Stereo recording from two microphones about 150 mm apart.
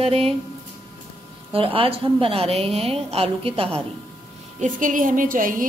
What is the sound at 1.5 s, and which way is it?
A woman's voice, 40° right (ahead or behind).